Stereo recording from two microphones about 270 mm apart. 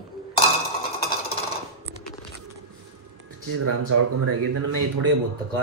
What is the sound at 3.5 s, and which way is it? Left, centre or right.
Speech, right.